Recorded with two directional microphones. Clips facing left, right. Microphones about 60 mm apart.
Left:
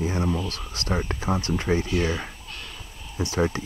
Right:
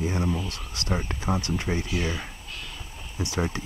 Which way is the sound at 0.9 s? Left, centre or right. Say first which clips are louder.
Left 2 dB; centre.